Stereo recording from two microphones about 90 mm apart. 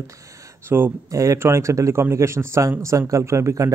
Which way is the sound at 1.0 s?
35° right (ahead or behind).